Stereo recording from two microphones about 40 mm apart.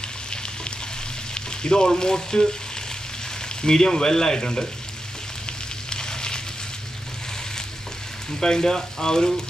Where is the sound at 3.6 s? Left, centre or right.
Centre.